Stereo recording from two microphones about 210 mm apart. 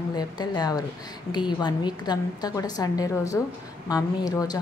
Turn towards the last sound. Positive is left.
turn(degrees=15)  # may be behind; listen again after turning